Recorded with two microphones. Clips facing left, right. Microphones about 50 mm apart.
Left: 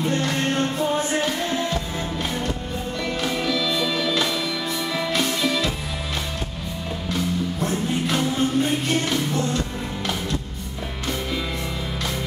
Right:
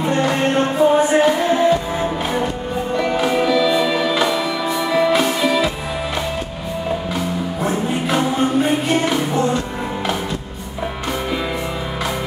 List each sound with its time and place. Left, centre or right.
0.0 s music: centre
7.2 s music: centre